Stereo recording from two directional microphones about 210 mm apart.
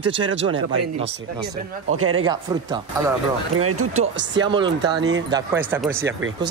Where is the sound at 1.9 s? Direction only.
90° right.